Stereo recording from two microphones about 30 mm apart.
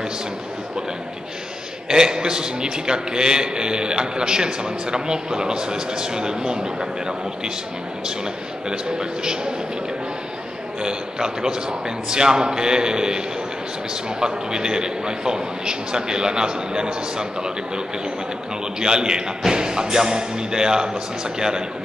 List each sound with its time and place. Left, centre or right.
1.9 s a man's voice: right
8.6 s a man's voice: right
10.8 s a man's voice: right
14.2 s a man's voice: right